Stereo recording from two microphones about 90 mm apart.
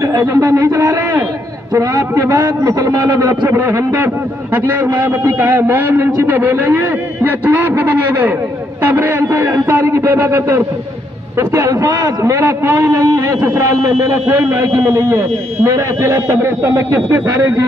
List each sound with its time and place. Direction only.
0.0 s a sound: 35° right (ahead or behind)
0.7 s a man's voice: 20° right (ahead or behind)
1.7 s a man's voice: 40° right (ahead or behind)
3.3 s a man's voice: 20° right (ahead or behind)
11.3 s a man's voice: 35° right (ahead or behind)
12.2 s a man's voice: 30° right (ahead or behind)